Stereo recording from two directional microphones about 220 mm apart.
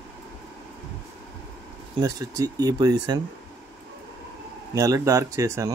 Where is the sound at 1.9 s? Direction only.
15° right (ahead or behind).